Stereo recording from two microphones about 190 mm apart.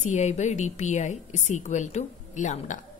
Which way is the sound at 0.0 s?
40° left (ahead or behind).